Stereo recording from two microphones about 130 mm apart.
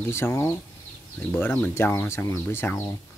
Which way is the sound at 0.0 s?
20° left (ahead or behind).